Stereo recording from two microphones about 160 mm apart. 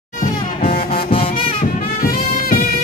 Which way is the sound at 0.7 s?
35° left (ahead or behind).